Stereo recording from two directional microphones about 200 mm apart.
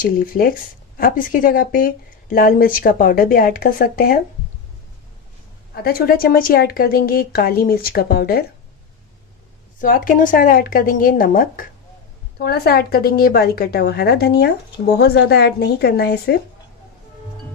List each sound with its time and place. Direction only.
0.0 s speech: 45° left (ahead or behind)
5.8 s speech: 50° left (ahead or behind)
9.8 s speech: 40° left (ahead or behind)